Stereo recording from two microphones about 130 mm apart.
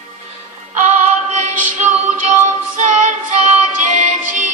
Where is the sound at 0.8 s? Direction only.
70° right (ahead or behind).